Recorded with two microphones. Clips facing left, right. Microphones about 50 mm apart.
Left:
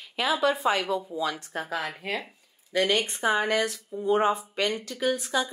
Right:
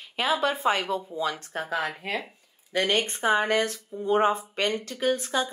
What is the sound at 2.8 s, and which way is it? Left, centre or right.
Speech, right.